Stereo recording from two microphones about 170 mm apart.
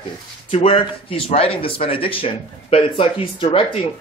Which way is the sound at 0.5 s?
30° left (ahead or behind).